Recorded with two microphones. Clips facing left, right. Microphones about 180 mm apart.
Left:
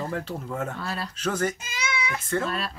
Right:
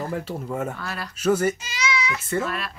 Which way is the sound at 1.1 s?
10° right (ahead or behind).